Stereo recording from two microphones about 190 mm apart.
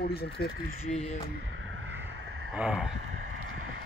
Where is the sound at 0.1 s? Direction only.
55° left (ahead or behind).